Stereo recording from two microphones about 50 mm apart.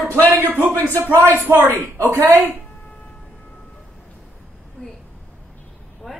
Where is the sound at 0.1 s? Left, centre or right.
Left.